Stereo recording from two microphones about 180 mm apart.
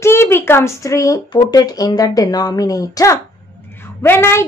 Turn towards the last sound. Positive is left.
turn(degrees=15)  # may be behind; listen again after turning